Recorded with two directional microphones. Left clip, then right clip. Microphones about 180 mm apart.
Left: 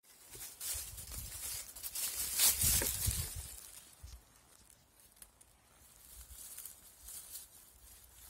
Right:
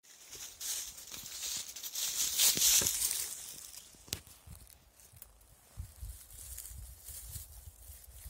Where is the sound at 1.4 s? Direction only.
5° left (ahead or behind).